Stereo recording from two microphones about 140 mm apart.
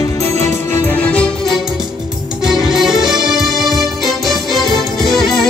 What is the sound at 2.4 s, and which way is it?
Music, 5° right (ahead or behind).